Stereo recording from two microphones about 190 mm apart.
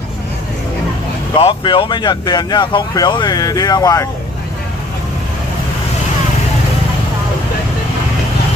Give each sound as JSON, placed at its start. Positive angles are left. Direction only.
{"t": 1.4, "sound": "speech", "side_deg": 25}